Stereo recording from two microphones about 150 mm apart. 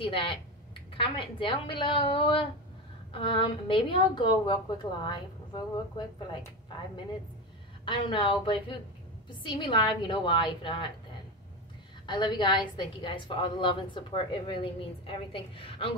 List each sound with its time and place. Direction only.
0.0 s a woman's voice: 35° left (ahead or behind)
7.8 s a woman's voice: 35° left (ahead or behind)
12.1 s a woman's voice: 30° left (ahead or behind)